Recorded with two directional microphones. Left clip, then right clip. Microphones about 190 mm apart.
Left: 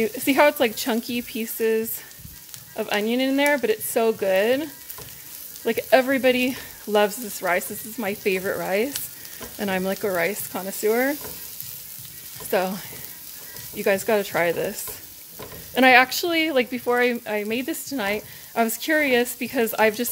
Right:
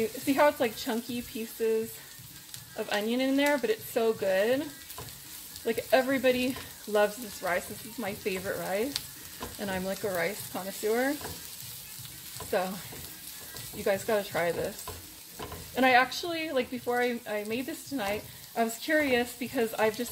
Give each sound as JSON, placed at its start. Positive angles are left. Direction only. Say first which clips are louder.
{"t": 0.0, "sound": "speech", "louder": "left 7 dB", "side_deg": 45}
{"t": 5.7, "sound": "speech", "louder": "left 7 dB", "side_deg": 40}
{"t": 12.5, "sound": "speech", "louder": "left 7 dB", "side_deg": 45}
{"t": 13.8, "sound": "speech", "louder": "left 7 dB", "side_deg": 45}
{"t": 15.7, "sound": "speech", "louder": "left 8 dB", "side_deg": 45}